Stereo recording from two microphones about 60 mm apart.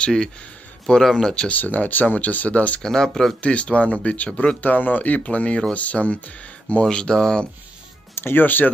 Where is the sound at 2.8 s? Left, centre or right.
Centre.